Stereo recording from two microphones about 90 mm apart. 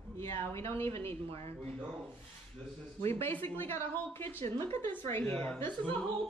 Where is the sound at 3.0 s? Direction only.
25° left (ahead or behind).